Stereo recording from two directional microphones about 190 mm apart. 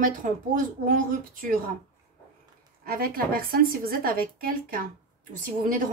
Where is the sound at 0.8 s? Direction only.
45° right (ahead or behind).